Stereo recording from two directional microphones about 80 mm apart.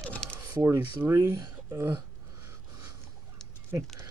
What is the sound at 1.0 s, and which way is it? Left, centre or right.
Speech, right.